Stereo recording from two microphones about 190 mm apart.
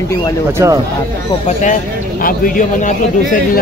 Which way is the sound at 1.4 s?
40° left (ahead or behind).